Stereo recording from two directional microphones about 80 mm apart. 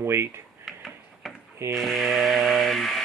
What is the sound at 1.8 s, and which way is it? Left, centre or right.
Music, centre.